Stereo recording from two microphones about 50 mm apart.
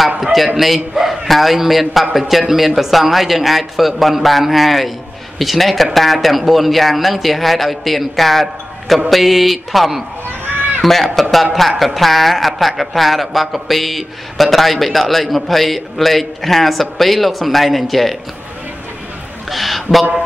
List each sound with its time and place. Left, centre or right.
0.2 s a man's voice: centre
19.5 s speech: centre